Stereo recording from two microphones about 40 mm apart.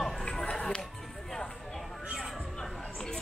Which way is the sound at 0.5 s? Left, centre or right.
Centre.